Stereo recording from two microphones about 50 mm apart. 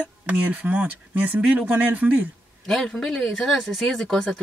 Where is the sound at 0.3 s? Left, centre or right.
Right.